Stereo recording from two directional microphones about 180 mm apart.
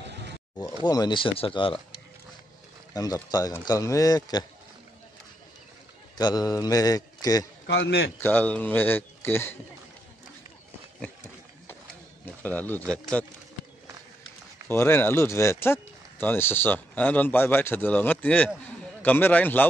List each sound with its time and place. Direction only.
0.8 s a man's voice: 25° left (ahead or behind)
2.9 s a man's voice: 20° left (ahead or behind)
6.1 s a man's voice: 20° left (ahead or behind)
7.6 s a man's voice: 70° left (ahead or behind)
8.2 s speech: 10° left (ahead or behind)
12.4 s speech: 10° left (ahead or behind)
14.7 s speech: 15° left (ahead or behind)